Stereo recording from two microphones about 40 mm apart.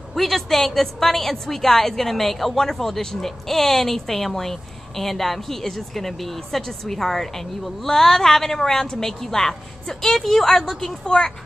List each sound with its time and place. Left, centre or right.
0.1 s a woman's voice: centre